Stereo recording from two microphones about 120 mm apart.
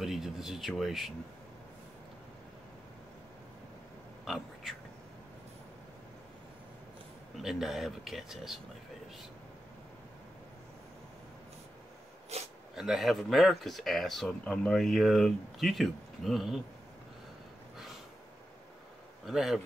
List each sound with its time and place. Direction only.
0.0 s speech: 5° right (ahead or behind)
4.2 s a sound: centre (ahead or behind)
7.3 s speech: 5° right (ahead or behind)
12.3 s a sound: 60° right (ahead or behind)
12.7 s speech: 5° right (ahead or behind)
19.2 s speech: centre (ahead or behind)